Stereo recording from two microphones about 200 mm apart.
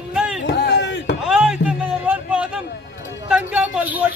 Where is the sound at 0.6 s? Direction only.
55° left (ahead or behind).